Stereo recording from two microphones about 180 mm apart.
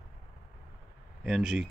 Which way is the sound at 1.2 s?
5° right (ahead or behind).